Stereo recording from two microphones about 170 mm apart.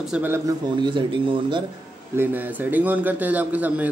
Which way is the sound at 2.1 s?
10° right (ahead or behind).